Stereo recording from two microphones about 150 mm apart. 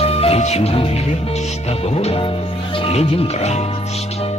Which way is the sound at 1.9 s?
40° left (ahead or behind).